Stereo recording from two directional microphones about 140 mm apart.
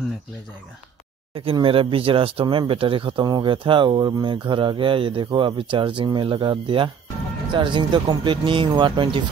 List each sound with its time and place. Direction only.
1.3 s speech: 40° right (ahead or behind)